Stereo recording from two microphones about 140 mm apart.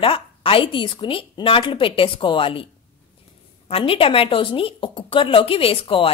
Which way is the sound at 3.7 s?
40° left (ahead or behind).